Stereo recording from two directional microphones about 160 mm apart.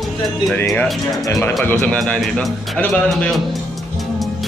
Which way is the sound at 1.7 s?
5° left (ahead or behind).